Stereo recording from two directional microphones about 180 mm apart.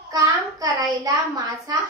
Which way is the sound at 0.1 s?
20° right (ahead or behind).